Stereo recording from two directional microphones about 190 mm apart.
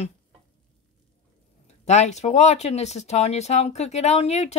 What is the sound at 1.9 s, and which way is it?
Speech, 35° left (ahead or behind).